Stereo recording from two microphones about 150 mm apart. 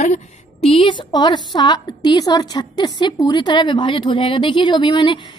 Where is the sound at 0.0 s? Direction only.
45° left (ahead or behind).